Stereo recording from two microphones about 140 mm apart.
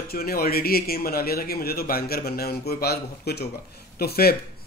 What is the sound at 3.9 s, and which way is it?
Speech, 90° left.